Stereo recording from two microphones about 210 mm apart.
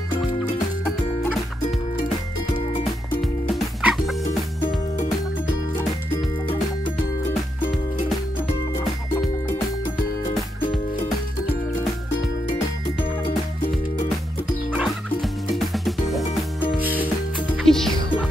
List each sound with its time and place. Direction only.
3.2 s music: centre (ahead or behind)
15.5 s music: centre (ahead or behind)
17.6 s music: centre (ahead or behind)